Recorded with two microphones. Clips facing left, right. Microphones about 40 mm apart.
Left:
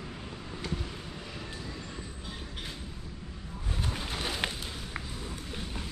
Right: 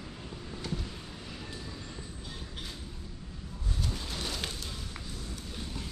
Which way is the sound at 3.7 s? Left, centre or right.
Left.